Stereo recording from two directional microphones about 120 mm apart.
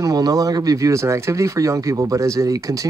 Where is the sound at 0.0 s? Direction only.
30° right (ahead or behind).